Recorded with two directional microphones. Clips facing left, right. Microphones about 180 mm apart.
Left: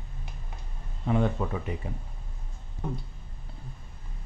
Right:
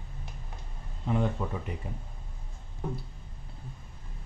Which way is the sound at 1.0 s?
70° left (ahead or behind).